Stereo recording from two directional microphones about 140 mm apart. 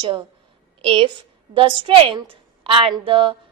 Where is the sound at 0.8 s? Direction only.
40° right (ahead or behind).